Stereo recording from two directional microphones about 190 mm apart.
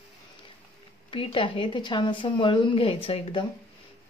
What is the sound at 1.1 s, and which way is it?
A woman's voice, 25° left (ahead or behind).